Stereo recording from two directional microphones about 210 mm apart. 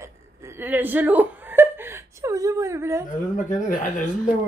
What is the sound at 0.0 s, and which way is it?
Laughter, 10° right (ahead or behind).